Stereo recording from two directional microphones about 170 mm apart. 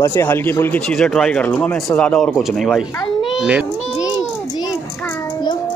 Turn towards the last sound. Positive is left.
turn(degrees=-5)  # may be behind; listen again after turning